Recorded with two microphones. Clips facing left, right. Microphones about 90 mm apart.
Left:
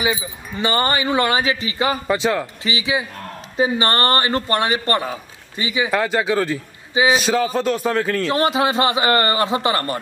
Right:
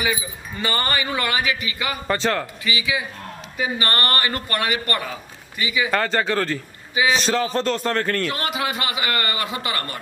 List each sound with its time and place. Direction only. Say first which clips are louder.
0.0 s a man's voice: left 3 dB; 20° left (ahead or behind)
2.0 s speech: right 2 dB; 5° left (ahead or behind)
2.6 s a man's voice: left 3 dB; 25° left (ahead or behind)
5.9 s a man's voice: left 2 dB; 10° left (ahead or behind)
8.3 s a man's voice: left 7 dB; 30° left (ahead or behind)